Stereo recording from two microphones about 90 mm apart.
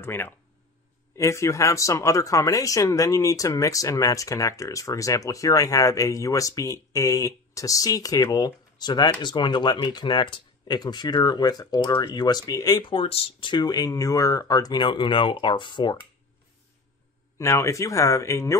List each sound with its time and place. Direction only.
0.0 s speech: 25° left (ahead or behind); by 12.8 s 45° left (ahead or behind)
12.8 s speech: 85° left; by 16.0 s 60° left (ahead or behind)
17.4 s speech: 30° left (ahead or behind)